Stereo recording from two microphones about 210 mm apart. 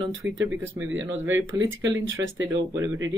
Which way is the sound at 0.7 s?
65° right (ahead or behind).